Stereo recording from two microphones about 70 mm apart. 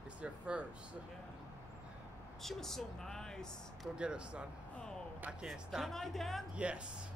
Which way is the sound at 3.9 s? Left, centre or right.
Centre.